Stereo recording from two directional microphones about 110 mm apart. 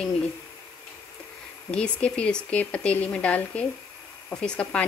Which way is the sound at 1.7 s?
10° left (ahead or behind).